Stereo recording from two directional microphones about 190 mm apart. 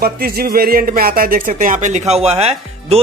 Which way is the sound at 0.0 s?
55° right (ahead or behind).